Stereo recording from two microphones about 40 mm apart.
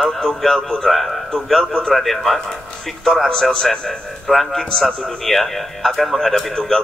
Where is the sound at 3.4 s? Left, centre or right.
Centre.